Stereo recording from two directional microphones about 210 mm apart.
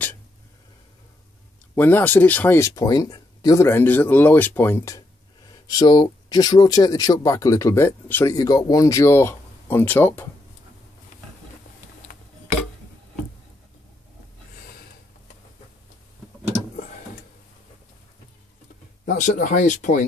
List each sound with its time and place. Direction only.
1.8 s speech: 10° left (ahead or behind)
19.0 s speech: 35° left (ahead or behind)